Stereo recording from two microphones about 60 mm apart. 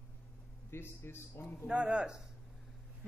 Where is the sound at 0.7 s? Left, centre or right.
Left.